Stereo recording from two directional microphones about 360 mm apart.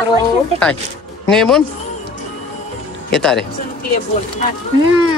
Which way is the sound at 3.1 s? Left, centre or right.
Centre.